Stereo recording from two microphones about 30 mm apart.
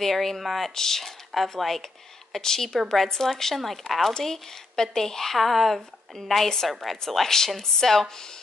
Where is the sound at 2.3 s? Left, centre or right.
Centre.